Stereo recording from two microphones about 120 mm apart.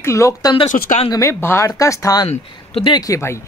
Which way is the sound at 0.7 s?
90° left.